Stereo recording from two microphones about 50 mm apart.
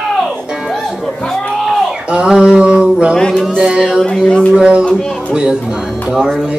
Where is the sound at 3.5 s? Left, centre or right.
Centre.